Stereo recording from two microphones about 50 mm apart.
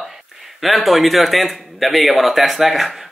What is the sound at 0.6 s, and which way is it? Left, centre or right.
Speech, centre.